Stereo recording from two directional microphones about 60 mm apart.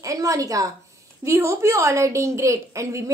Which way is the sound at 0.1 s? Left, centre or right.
Right.